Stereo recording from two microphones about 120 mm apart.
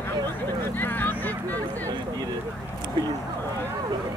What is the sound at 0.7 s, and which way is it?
Vehicle, 15° left (ahead or behind).